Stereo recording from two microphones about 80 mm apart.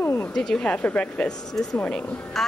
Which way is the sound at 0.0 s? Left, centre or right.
Left.